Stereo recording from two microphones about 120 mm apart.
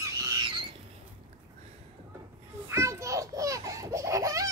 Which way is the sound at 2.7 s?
25° right (ahead or behind).